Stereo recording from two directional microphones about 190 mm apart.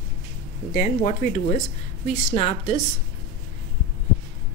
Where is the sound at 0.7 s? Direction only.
45° left (ahead or behind).